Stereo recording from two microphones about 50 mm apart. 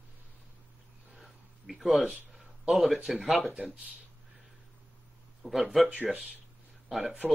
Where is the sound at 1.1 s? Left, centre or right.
Centre.